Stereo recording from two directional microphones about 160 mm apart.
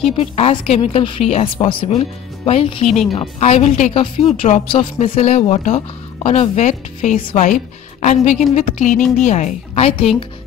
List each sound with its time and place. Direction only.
0.2 s a woman's voice: 40° left (ahead or behind)